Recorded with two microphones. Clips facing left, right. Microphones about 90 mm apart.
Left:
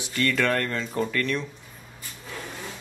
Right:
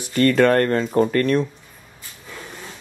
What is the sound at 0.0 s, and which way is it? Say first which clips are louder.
Speech: right 9 dB; 45° right (ahead or behind).